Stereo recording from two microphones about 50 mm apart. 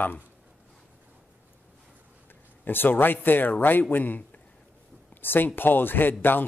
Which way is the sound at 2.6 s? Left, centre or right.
Left.